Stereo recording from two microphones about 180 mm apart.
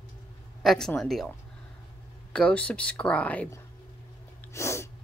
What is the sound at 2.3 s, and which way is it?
Speech, 5° left (ahead or behind).